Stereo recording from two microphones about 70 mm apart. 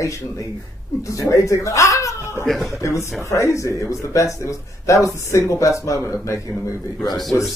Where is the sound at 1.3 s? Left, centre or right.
Left.